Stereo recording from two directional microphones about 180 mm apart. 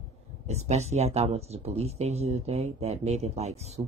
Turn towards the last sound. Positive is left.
turn(degrees=-35)  # may be behind; listen again after turning